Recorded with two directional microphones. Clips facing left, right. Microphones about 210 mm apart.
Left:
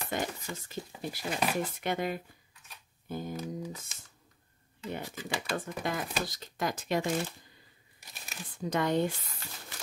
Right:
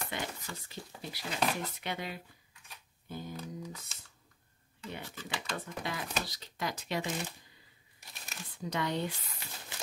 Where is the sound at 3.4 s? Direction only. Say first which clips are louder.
Left 5 dB; 10° left (ahead or behind).